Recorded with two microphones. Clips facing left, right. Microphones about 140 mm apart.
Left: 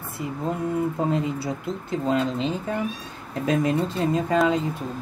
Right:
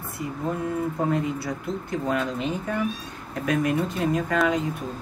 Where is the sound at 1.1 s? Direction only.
25° left (ahead or behind).